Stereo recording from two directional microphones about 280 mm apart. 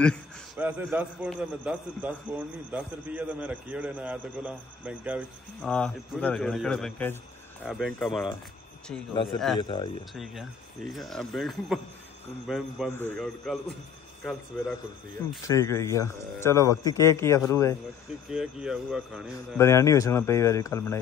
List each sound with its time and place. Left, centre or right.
0.0 s a man's voice: centre
9.1 s speech: centre
10.1 s a man's voice: centre
15.4 s speech: centre
18.3 s a man's voice: centre
19.3 s speech: centre